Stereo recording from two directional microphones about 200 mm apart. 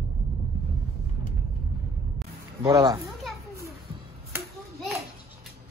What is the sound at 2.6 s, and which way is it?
Speech, 20° right (ahead or behind).